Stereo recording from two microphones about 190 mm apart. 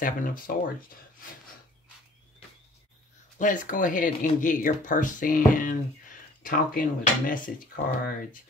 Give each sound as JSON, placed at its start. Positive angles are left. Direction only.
{"t": 0.0, "sound": "speech", "side_deg": 45}
{"t": 3.3, "sound": "speech", "side_deg": 45}